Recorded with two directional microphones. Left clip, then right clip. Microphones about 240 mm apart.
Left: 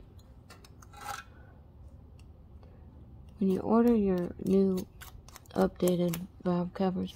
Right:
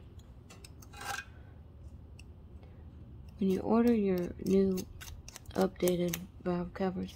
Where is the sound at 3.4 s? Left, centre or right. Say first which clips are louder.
Left 3 dB; left.